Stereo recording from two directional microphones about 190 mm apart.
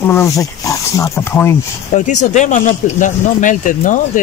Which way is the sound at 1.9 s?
40° left (ahead or behind).